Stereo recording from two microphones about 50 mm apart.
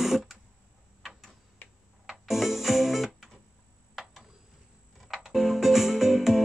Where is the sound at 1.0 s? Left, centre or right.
Centre.